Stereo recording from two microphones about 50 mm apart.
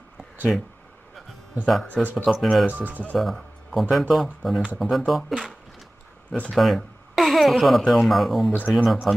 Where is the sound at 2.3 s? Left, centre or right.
Centre.